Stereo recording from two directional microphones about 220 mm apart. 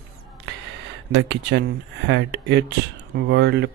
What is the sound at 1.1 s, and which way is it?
Speech, 50° right (ahead or behind).